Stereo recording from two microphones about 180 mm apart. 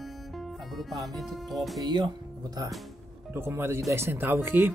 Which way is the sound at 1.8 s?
25° right (ahead or behind).